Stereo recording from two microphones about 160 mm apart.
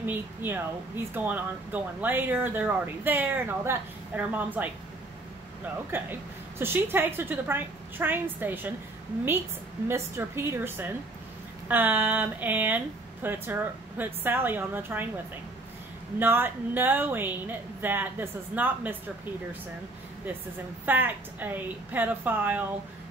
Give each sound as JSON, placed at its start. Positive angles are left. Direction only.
{"t": 0.0, "sound": "speech", "side_deg": -10}
{"t": 5.9, "sound": "speech", "side_deg": -15}
{"t": 9.8, "sound": "speech", "side_deg": -15}
{"t": 16.2, "sound": "speech", "side_deg": -15}
{"t": 20.8, "sound": "speech", "side_deg": -10}